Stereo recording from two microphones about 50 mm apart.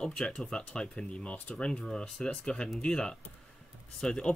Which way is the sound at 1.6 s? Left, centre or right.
Centre.